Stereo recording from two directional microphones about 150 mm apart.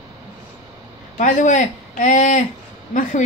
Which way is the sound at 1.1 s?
55° left (ahead or behind).